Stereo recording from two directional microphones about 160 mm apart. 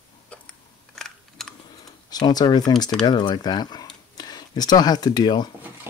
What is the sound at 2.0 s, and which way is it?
Speech, 25° left (ahead or behind).